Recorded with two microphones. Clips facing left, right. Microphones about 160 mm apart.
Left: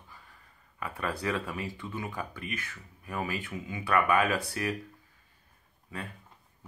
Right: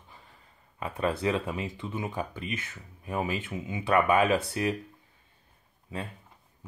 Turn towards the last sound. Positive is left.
turn(degrees=-20)  # may be behind; listen again after turning